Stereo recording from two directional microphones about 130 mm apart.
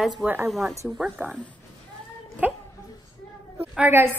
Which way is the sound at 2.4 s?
10° right (ahead or behind).